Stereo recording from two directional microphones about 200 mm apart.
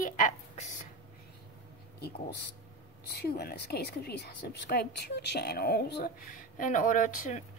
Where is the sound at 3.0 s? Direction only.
55° left (ahead or behind).